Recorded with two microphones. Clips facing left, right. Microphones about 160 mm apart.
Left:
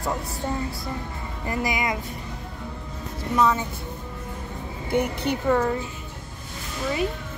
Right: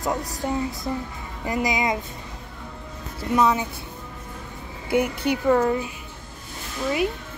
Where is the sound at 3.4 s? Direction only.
15° right (ahead or behind).